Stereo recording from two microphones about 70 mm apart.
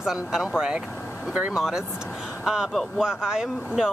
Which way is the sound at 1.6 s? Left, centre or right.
Centre.